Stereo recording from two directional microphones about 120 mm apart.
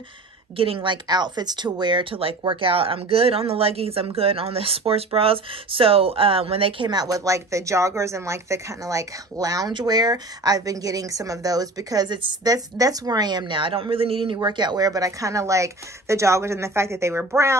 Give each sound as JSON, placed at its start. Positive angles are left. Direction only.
{"t": 0.6, "sound": "speech", "side_deg": -45}
{"t": 6.9, "sound": "speech", "side_deg": -30}